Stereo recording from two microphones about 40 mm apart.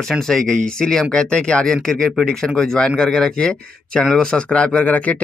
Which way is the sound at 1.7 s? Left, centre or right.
Centre.